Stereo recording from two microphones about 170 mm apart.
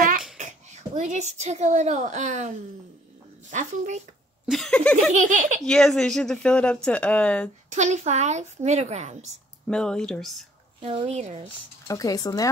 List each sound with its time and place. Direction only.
0.4 s a woman's voice: 45° right (ahead or behind)
4.5 s speech: centre (ahead or behind)
5.1 s a woman's voice: 45° right (ahead or behind)
5.6 s speech: 5° left (ahead or behind)
7.7 s a woman's voice: 45° right (ahead or behind)
9.7 s speech: 5° left (ahead or behind)
10.8 s speech: 35° right (ahead or behind)
11.9 s speech: 20° left (ahead or behind)